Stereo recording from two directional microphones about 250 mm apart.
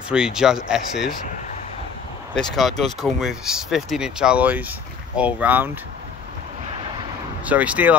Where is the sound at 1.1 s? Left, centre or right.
Left.